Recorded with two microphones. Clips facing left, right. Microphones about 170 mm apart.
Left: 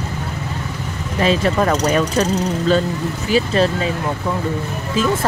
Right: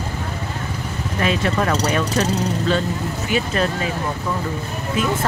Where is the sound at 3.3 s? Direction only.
30° left (ahead or behind).